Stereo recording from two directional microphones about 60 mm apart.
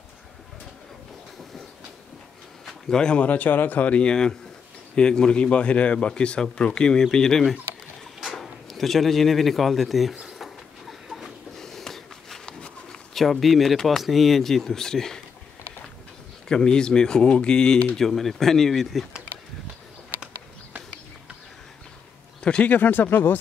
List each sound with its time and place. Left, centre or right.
2.6 s a sound: centre
3.3 s speech: left; by 7.5 s centre
8.3 s a sound: centre
11.5 s sniff: centre
12.4 s a sound: centre
13.1 s speech: centre
16.4 s speech: centre
22.4 s speech: centre
22.7 s speech: left